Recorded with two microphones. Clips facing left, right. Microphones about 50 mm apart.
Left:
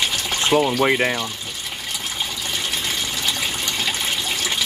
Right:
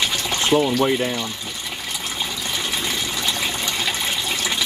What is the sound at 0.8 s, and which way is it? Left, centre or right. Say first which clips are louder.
Speech: left 2 dB; left.